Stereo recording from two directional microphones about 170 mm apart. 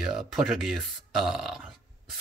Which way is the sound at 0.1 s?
Centre (ahead or behind).